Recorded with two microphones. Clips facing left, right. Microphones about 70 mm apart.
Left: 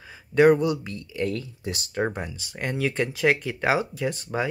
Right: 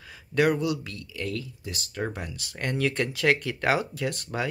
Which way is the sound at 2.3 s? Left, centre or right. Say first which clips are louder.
Left 1 dB; centre.